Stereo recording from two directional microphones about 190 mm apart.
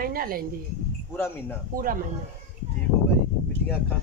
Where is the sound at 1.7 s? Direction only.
50° right (ahead or behind).